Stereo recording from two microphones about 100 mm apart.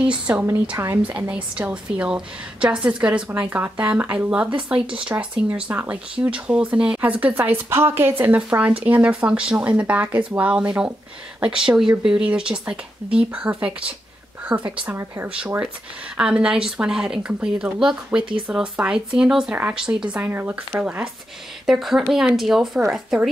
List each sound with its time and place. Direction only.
0.0 s speech: 10° right (ahead or behind)
0.7 s speech: 25° right (ahead or behind)
14.5 s speech: 35° right (ahead or behind)
15.2 s speech: 15° right (ahead or behind)
21.6 s speech: 5° right (ahead or behind)